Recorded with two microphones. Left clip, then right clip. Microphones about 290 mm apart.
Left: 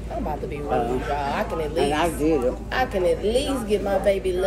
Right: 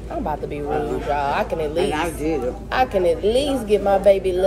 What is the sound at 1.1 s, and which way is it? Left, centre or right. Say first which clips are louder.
Speech: right 7 dB; centre.